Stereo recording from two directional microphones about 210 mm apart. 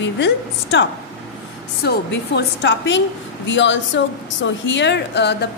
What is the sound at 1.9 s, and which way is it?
A woman's voice, 55° left (ahead or behind).